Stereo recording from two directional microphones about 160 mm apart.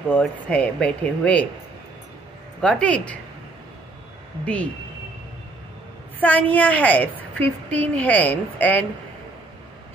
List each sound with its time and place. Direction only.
0.1 s a woman's voice: 5° left (ahead or behind)
2.6 s a woman's voice: 5° left (ahead or behind)
6.1 s a woman's voice: 10° left (ahead or behind)